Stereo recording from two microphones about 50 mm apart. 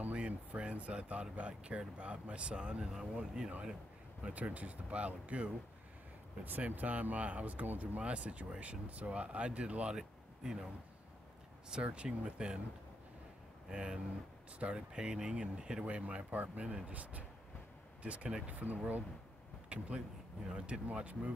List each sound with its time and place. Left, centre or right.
0.1 s speech: right
4.3 s speech: right
6.4 s speech: right
9.9 s a sound: centre
11.7 s speech: right
13.7 s speech: centre